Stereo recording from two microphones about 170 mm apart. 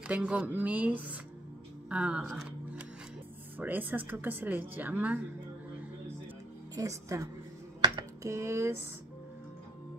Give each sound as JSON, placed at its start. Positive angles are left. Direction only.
{"t": 0.0, "sound": "a woman's voice", "side_deg": -5}
{"t": 6.7, "sound": "a woman's voice", "side_deg": -20}
{"t": 7.8, "sound": "a sound", "side_deg": -20}